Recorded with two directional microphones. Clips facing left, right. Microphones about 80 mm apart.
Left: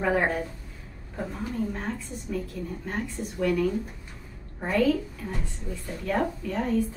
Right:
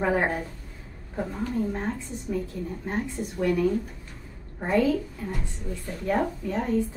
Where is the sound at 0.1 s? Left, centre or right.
Centre.